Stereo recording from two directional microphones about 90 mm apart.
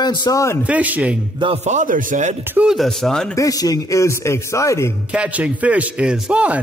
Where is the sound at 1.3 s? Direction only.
70° right (ahead or behind).